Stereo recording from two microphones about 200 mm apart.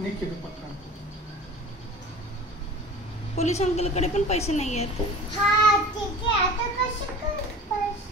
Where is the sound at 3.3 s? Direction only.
35° left (ahead or behind).